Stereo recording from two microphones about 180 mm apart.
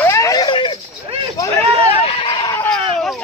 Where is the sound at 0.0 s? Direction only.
15° left (ahead or behind).